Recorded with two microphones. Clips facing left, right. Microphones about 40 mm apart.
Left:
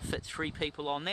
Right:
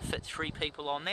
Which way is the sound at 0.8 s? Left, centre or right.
Centre.